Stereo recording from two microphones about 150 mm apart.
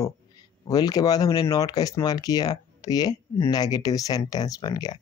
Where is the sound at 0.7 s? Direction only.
25° left (ahead or behind).